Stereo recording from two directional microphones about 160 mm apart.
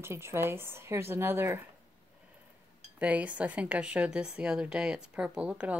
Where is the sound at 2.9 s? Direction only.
10° right (ahead or behind).